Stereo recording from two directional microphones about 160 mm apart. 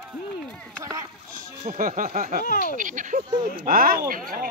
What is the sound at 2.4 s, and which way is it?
Speech, 55° left (ahead or behind).